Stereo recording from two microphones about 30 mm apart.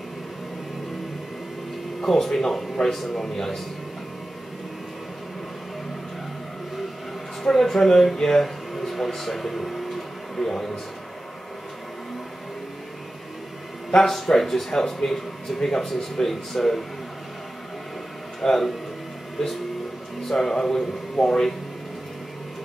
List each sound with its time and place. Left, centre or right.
2.0 s speech: centre
7.4 s speech: centre
13.9 s speech: centre
18.4 s speech: centre
20.2 s speech: centre